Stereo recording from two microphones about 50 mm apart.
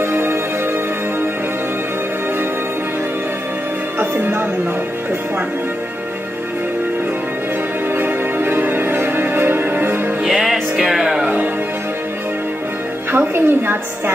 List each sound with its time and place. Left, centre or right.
0.0 s music: right
4.0 s music: right
7.9 s music: right
10.2 s music: centre
13.1 s a woman's voice: right